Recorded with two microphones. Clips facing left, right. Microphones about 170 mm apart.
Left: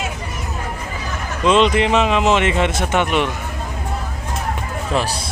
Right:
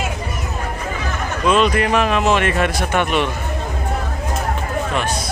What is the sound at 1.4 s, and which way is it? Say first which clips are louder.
Speech: left 2 dB; 20° left (ahead or behind).